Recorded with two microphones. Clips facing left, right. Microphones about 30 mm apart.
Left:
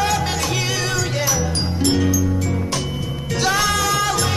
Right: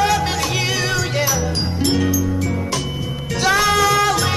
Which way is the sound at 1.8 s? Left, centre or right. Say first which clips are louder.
Even; centre.